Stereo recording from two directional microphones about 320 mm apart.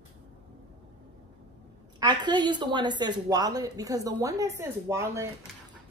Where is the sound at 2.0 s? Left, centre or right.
Centre.